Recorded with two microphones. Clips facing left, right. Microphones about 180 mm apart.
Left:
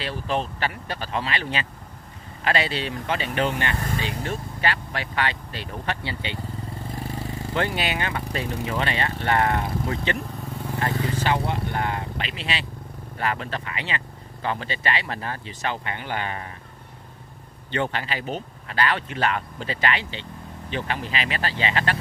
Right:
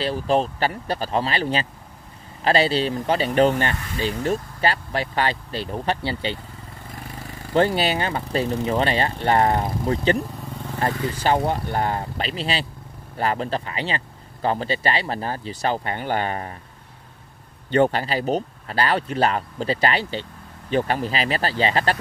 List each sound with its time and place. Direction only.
0.0 s speech: 35° right (ahead or behind)
7.5 s speech: 35° right (ahead or behind)
17.6 s speech: 45° right (ahead or behind)